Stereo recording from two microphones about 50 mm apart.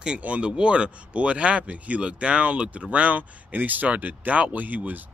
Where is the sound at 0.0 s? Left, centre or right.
Right.